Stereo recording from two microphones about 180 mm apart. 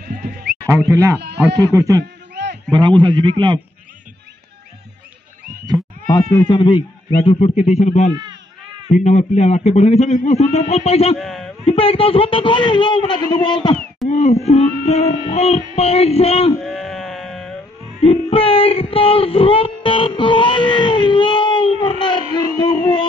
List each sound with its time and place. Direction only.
0.1 s sheep: 60° right (ahead or behind)
0.7 s speech: 15° right (ahead or behind)
1.2 s speech: 65° right (ahead or behind)
1.7 s a man's voice: 20° right (ahead or behind)
6.3 s a man's voice: 25° left (ahead or behind)
7.2 s a man's voice: 35° left (ahead or behind)
11.1 s a man's voice: centre (ahead or behind)
11.6 s speech: 30° left (ahead or behind)
14.0 s a man's voice: 35° left (ahead or behind)
16.6 s sheep: centre (ahead or behind)
18.0 s music: 30° left (ahead or behind)
22.6 s a sound: 25° left (ahead or behind)